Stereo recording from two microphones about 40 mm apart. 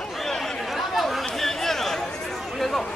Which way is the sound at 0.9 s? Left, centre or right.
Centre.